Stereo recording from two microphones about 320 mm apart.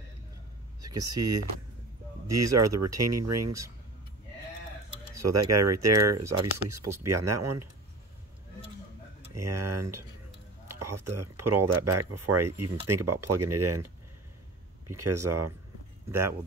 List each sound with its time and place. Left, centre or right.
0.8 s speech: centre
2.2 s speech: right
5.2 s speech: right
9.3 s speech: right
16.1 s speech: centre